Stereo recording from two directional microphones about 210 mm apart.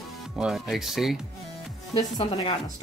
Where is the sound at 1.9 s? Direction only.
25° left (ahead or behind).